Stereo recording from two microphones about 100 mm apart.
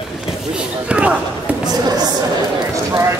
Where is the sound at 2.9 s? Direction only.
30° right (ahead or behind).